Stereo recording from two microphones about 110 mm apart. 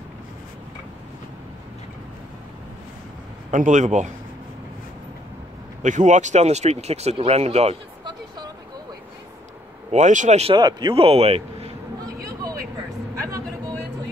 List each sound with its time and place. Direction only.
3.6 s speech: 90° right
5.8 s speech: 90° right; by 7.7 s 70° right (ahead or behind)
9.8 s speech: 90° right
10.5 s speech: 40° right (ahead or behind)
11.0 s speech: 60° right (ahead or behind)